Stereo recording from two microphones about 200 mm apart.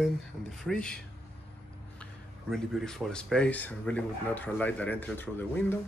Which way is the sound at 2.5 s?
Centre (ahead or behind).